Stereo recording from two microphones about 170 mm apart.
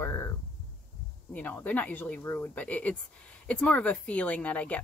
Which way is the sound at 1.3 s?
10° left (ahead or behind).